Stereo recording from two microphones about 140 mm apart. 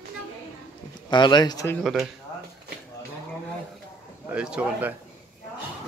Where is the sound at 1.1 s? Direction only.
30° left (ahead or behind).